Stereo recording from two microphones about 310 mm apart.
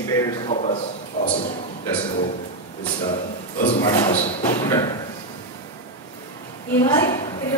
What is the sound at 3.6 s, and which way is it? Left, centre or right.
Speech, centre.